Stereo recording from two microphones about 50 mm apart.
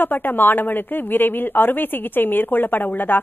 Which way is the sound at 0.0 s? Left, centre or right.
Left.